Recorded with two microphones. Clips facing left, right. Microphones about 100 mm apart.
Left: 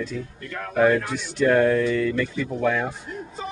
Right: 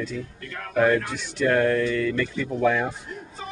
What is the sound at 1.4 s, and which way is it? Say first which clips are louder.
Speech: left 2 dB; 10° left (ahead or behind).